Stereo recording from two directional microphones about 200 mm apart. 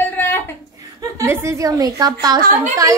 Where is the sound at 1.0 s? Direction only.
15° right (ahead or behind).